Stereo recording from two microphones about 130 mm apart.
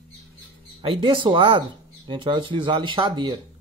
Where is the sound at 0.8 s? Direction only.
45° right (ahead or behind).